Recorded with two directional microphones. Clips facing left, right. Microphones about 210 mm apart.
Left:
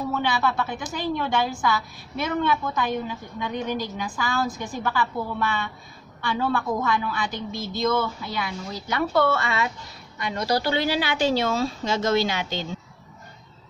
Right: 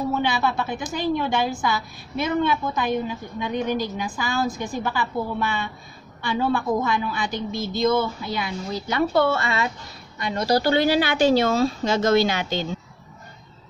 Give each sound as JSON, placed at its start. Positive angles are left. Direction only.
{"t": 0.1, "sound": "a woman's voice", "side_deg": -20}